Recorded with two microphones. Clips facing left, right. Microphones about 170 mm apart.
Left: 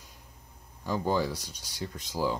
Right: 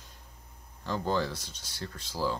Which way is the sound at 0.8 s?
10° left (ahead or behind).